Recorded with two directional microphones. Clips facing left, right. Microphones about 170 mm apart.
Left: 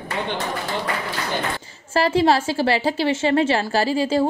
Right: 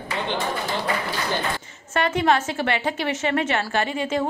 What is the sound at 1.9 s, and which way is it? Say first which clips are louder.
A woman's voice: left 3 dB; 30° left (ahead or behind).